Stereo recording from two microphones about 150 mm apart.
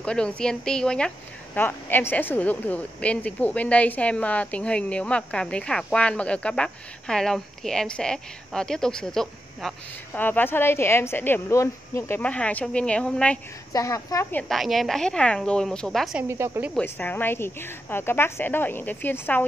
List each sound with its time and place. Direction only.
0.0 s a woman's voice: 5° left (ahead or behind)
10.2 s a woman's voice: 15° left (ahead or behind)
13.7 s a woman's voice: 20° left (ahead or behind)
14.5 s a woman's voice: centre (ahead or behind)
16.2 s speech: 20° right (ahead or behind)
16.7 s a woman's voice: 10° left (ahead or behind)